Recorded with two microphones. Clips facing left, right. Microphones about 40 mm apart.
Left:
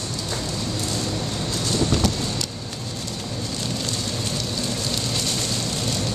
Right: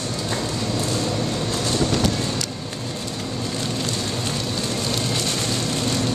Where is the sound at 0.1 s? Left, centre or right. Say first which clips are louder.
Right 3 dB; right.